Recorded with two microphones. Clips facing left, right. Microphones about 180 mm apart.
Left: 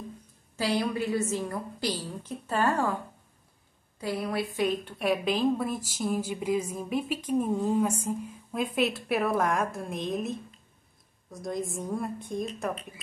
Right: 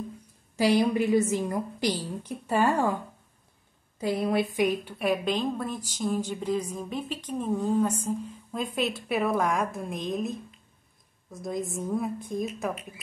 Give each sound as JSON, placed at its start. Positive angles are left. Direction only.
{"t": 0.6, "sound": "a woman's voice", "side_deg": -15}
{"t": 4.0, "sound": "a woman's voice", "side_deg": -20}